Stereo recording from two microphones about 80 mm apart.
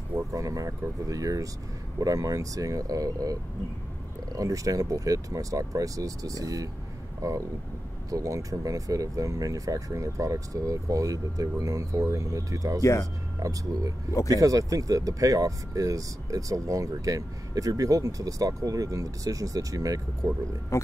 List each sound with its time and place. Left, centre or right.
0.3 s speech: right
4.4 s speech: right
20.7 s speech: left